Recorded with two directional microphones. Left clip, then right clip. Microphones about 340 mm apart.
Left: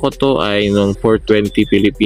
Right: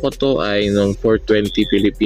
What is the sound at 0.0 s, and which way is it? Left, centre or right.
Speech, centre.